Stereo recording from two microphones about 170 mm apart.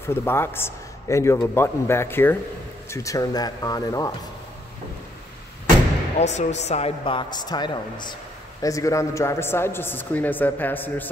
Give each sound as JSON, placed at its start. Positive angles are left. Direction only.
{"t": 0.1, "sound": "a woman's voice", "side_deg": 15}
{"t": 6.1, "sound": "a woman's voice", "side_deg": 40}